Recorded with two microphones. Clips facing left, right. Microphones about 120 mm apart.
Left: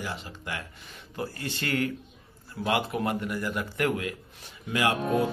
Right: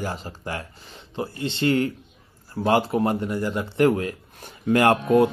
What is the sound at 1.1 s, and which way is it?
Speech, 25° right (ahead or behind).